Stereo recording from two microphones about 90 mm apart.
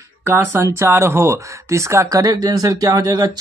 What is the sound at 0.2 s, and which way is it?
Speech, 25° right (ahead or behind).